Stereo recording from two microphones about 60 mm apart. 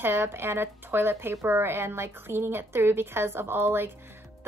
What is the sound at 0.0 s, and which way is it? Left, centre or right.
A woman's voice, right.